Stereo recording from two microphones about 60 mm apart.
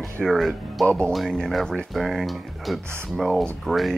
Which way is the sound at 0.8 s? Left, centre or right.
Centre.